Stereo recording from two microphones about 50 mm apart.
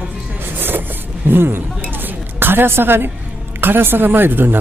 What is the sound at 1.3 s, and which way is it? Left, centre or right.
Speech, right.